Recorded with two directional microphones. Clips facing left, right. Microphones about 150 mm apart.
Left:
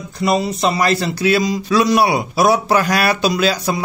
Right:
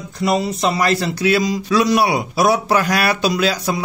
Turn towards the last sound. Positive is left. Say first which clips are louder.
# left 1 dB
turn(degrees=30)  # may be behind; listen again after turning